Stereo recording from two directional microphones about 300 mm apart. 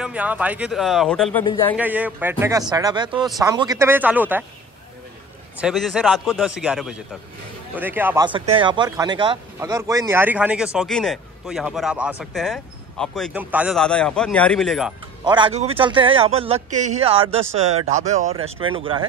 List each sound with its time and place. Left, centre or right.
0.0 s speech: centre
1.4 s speech: centre
1.8 s speech: centre
5.6 s speech: centre
15.2 s a man's voice: centre